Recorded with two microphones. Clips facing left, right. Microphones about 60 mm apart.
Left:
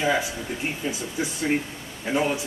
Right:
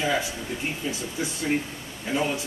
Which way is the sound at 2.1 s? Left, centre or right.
Centre.